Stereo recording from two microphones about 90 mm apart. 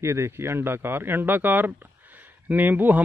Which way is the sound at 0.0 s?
30° right (ahead or behind).